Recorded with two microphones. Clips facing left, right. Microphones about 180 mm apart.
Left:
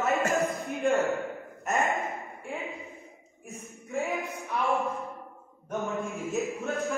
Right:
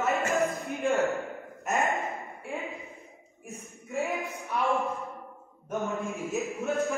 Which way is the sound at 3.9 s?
Centre (ahead or behind).